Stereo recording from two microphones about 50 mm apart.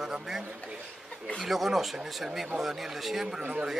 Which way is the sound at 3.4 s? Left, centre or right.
Right.